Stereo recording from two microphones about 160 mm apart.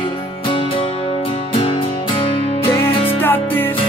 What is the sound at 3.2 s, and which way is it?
Music, 10° left (ahead or behind).